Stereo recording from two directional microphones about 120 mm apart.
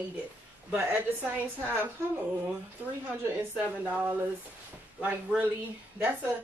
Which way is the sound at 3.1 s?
15° right (ahead or behind).